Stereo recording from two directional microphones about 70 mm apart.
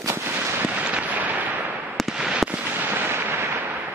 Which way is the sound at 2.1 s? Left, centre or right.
Centre.